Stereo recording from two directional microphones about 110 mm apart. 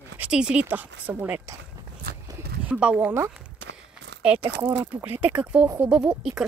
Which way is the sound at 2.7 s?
10° right (ahead or behind).